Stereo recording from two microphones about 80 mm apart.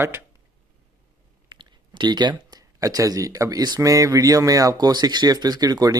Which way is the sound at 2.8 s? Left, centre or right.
Right.